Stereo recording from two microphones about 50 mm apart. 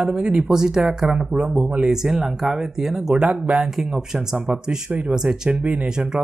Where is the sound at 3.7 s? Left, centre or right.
Centre.